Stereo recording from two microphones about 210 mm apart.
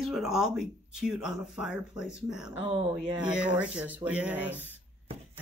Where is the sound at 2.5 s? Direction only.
30° right (ahead or behind).